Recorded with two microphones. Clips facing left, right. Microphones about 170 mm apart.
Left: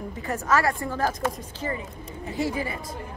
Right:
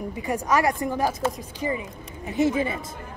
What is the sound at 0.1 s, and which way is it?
A woman's voice, 15° right (ahead or behind).